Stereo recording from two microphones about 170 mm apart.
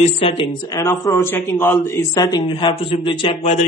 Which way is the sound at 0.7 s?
15° left (ahead or behind).